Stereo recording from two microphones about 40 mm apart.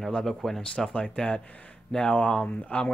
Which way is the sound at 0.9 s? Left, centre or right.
Left.